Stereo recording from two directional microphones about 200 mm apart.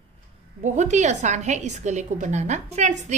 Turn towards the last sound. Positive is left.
turn(degrees=-35)  # may be behind; listen again after turning